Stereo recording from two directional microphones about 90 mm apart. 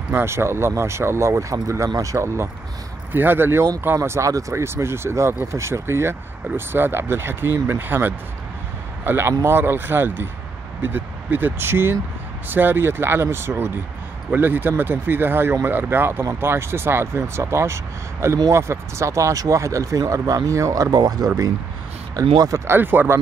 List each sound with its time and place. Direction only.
0.1 s speech: 25° right (ahead or behind); by 22.6 s 45° right (ahead or behind)
22.7 s speech: 25° right (ahead or behind)